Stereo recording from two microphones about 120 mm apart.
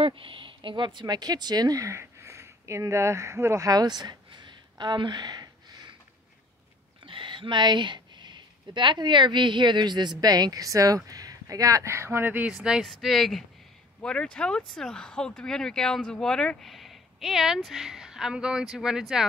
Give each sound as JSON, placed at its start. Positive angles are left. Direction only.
{"t": 0.0, "sound": "speech", "side_deg": -45}
{"t": 7.1, "sound": "speech", "side_deg": -45}
{"t": 12.5, "sound": "speech", "side_deg": -5}